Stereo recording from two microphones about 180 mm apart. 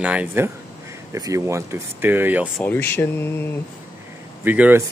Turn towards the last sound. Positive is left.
turn(degrees=-10)  # may be behind; listen again after turning